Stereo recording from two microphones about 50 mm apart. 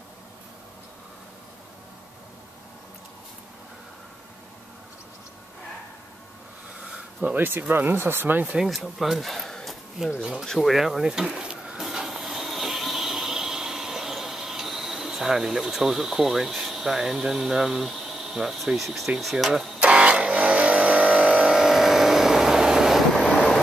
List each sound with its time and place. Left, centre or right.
7.3 s speech: right
8.6 s speech: centre
10.0 s speech: centre
10.4 s speech: centre
11.9 s a sound: centre
19.8 s vehicle: right
21.5 s vehicle: centre